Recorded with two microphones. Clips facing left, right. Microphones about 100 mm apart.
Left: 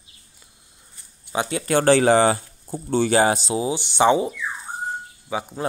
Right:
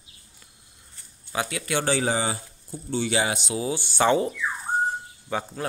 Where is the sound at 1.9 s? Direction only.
65° left (ahead or behind); by 3.5 s 35° left (ahead or behind).